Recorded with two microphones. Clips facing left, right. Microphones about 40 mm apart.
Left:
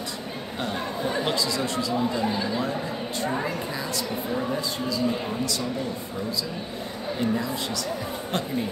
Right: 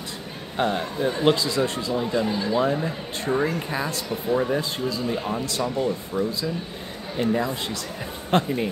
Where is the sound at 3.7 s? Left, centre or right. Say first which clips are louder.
Right 2 dB; right.